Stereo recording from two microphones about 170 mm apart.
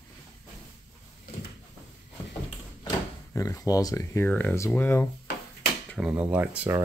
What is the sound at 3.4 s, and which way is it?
Speech, 20° left (ahead or behind).